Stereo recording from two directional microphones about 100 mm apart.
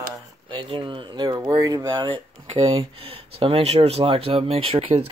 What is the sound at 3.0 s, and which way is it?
Speech, 70° right (ahead or behind).